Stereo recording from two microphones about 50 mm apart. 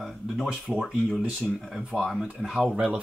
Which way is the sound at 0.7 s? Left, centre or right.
Centre.